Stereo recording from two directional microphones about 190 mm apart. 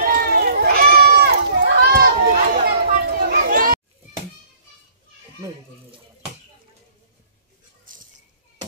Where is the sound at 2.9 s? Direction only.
55° right (ahead or behind).